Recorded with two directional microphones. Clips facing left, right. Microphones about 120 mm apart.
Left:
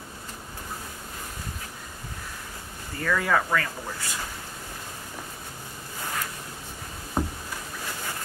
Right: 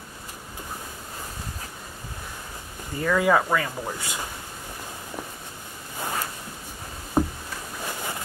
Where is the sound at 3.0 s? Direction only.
15° right (ahead or behind).